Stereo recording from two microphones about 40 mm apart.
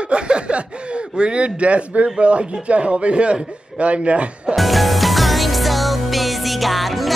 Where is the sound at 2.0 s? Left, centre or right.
Right.